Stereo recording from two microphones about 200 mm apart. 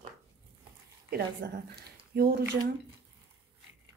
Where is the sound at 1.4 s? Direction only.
60° right (ahead or behind).